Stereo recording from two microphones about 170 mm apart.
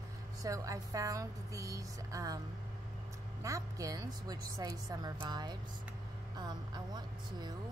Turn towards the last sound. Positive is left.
turn(degrees=-25)  # may be behind; listen again after turning